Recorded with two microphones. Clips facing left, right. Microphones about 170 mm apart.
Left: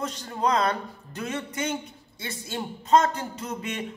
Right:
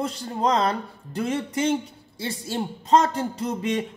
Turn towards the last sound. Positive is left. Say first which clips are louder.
# right 7 dB
turn(degrees=-35)  # may be behind; listen again after turning